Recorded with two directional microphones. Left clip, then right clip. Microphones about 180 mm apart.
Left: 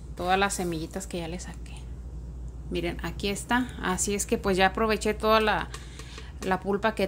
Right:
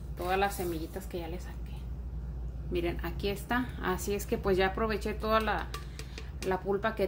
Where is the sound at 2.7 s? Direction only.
30° left (ahead or behind).